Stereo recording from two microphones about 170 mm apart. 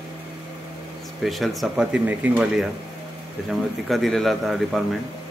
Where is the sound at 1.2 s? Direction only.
Centre (ahead or behind).